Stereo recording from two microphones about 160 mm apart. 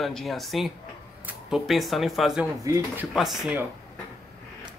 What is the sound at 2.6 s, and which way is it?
Speech, 20° right (ahead or behind).